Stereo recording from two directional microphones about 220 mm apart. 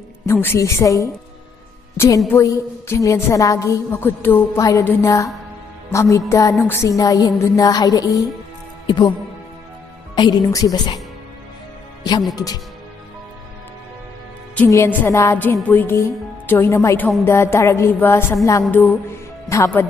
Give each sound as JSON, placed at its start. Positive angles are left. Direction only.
{"t": 0.3, "sound": "a woman's voice", "side_deg": 10}
{"t": 10.1, "sound": "a woman's voice", "side_deg": 20}
{"t": 14.5, "sound": "a woman's voice", "side_deg": 10}